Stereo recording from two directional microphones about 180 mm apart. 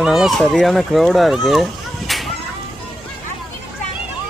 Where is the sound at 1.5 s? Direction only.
Centre (ahead or behind).